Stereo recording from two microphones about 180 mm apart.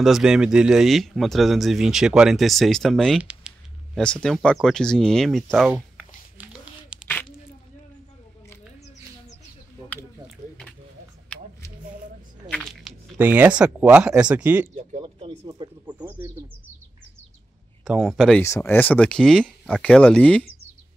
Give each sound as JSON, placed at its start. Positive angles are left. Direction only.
{"t": 0.0, "sound": "speech", "side_deg": 0}
{"t": 6.3, "sound": "a sound", "side_deg": -10}
{"t": 12.4, "sound": "a sound", "side_deg": 0}
{"t": 13.2, "sound": "speech", "side_deg": -10}
{"t": 14.8, "sound": "speech", "side_deg": -35}
{"t": 16.0, "sound": "speech", "side_deg": -10}
{"t": 17.8, "sound": "speech", "side_deg": 0}
{"t": 18.4, "sound": "speech", "side_deg": 15}